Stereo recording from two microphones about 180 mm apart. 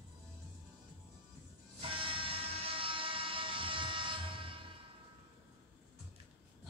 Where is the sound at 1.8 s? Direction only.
30° right (ahead or behind).